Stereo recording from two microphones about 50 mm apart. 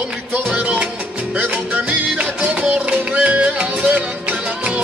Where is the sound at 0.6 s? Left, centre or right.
Centre.